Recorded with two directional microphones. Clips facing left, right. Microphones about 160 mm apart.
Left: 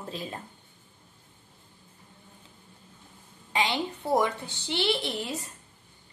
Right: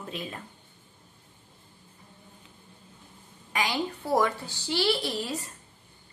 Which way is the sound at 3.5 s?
25° left (ahead or behind).